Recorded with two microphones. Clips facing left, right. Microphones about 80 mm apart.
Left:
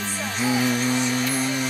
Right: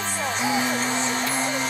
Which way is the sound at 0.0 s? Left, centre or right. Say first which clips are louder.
Right 1 dB; right.